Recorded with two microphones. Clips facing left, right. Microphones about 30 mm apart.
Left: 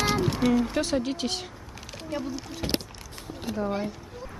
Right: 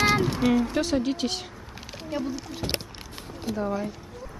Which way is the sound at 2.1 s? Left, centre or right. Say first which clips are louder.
Right 2 dB; centre.